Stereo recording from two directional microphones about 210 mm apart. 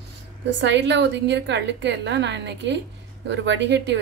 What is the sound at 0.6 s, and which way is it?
A woman's voice, 55° right (ahead or behind).